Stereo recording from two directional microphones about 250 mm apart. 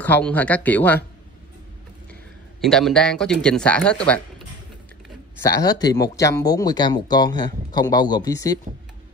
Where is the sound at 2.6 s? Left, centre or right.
Centre.